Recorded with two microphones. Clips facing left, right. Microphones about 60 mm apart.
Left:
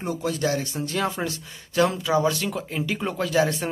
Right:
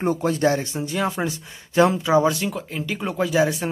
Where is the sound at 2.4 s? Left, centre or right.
Centre.